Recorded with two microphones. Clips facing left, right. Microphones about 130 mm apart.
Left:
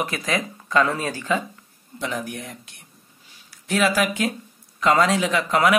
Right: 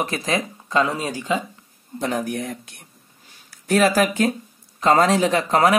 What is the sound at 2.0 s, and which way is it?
Speech, 40° right (ahead or behind).